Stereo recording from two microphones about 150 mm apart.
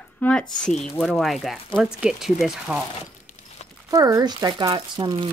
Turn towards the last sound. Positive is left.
turn(degrees=-30)  # may be behind; listen again after turning